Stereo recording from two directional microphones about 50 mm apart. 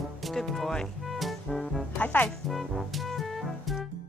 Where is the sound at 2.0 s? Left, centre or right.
Left.